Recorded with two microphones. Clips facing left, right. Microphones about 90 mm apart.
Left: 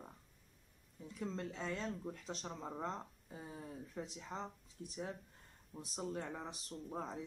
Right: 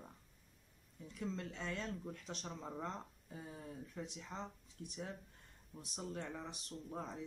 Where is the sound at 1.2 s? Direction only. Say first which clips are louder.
Left 1 dB; 30° left (ahead or behind).